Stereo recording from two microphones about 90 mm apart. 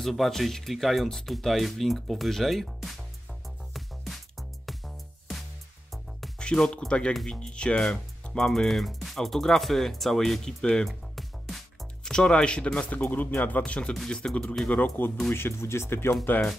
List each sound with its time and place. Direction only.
0.0 s speech: centre (ahead or behind)
3.4 s music: centre (ahead or behind)
6.4 s speech: 10° left (ahead or behind)
15.2 s speech: 25° left (ahead or behind)